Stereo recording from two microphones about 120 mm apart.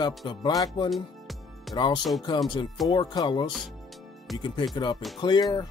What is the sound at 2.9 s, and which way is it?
Speech, 35° left (ahead or behind).